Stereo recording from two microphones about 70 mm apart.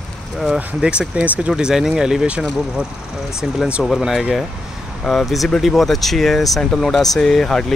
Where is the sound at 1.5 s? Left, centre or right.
Centre.